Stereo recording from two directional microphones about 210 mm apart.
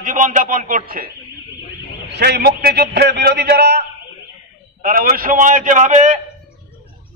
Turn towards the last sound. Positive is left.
turn(degrees=-35)  # may be behind; listen again after turning